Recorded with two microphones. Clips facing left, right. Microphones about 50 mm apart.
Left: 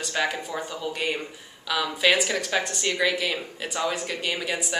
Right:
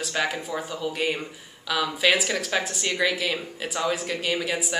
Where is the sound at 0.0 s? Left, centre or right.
Centre.